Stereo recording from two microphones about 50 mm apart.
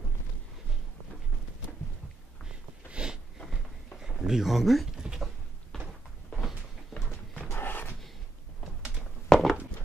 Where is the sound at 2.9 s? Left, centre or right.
Centre.